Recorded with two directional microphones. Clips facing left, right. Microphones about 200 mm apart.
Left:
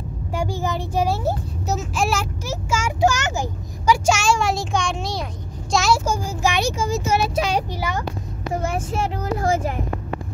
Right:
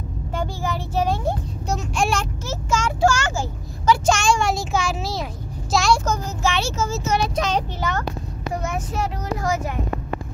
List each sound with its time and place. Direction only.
0.4 s a child's voice: 15° left (ahead or behind)
8.6 s speech: 30° left (ahead or behind)